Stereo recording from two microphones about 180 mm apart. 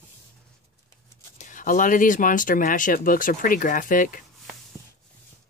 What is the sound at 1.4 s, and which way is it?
Speech, 45° left (ahead or behind).